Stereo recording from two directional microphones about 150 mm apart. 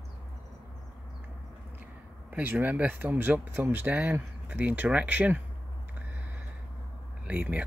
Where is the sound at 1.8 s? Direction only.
10° right (ahead or behind).